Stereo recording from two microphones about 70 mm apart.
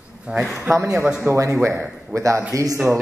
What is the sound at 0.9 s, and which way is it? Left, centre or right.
Speech, centre.